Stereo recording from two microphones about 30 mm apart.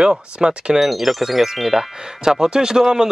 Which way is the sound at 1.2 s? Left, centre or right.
Centre.